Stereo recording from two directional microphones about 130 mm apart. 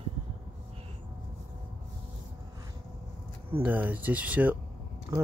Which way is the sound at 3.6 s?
10° right (ahead or behind).